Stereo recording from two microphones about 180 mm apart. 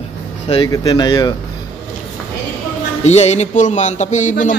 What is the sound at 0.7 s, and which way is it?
Speech, 20° left (ahead or behind).